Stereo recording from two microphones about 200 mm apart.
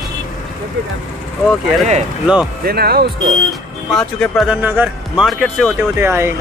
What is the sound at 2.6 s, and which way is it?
Speech, 50° right (ahead or behind).